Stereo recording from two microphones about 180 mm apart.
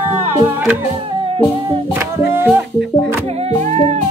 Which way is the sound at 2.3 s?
15° right (ahead or behind).